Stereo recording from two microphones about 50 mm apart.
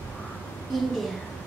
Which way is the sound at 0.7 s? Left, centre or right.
Centre.